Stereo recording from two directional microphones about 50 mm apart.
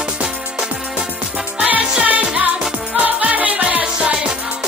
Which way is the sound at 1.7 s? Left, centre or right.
Right.